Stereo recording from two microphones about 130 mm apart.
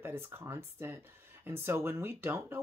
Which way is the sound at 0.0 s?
15° right (ahead or behind).